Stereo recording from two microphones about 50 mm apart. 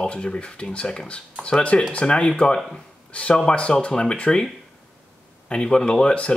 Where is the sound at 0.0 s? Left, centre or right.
Left.